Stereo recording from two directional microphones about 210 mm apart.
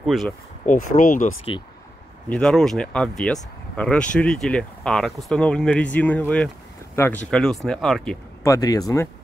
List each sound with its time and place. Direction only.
0.0 s speech: centre (ahead or behind)
0.9 s speech: 40° left (ahead or behind)
2.2 s speech: 5° left (ahead or behind)
8.5 s speech: 15° left (ahead or behind)